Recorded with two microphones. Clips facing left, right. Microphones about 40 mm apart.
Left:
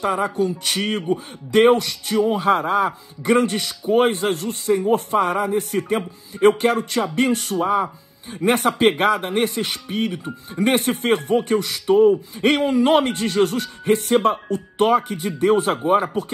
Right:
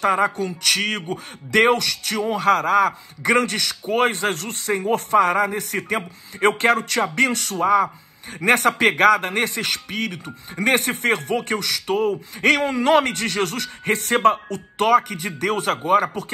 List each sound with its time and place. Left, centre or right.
0.0 s speech: right